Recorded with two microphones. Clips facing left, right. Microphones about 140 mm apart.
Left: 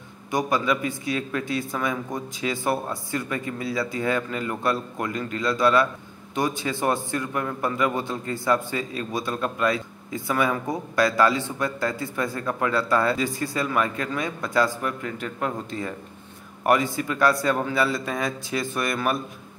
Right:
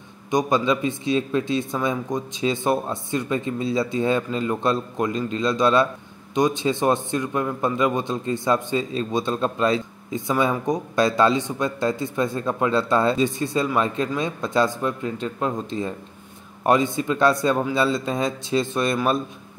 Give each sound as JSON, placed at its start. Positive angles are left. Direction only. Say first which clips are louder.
{"t": 0.3, "sound": "a man's voice", "louder": "right 3 dB", "side_deg": -20}